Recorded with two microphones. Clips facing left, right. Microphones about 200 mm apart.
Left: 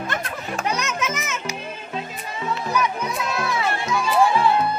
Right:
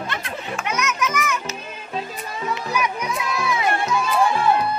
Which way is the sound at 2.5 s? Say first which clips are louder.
Left 2 dB; 10° right (ahead or behind).